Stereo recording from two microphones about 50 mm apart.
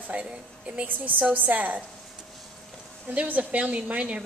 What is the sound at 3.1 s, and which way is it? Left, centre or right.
A woman's voice, right.